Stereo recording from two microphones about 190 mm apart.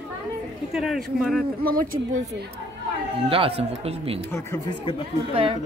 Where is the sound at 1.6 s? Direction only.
50° right (ahead or behind).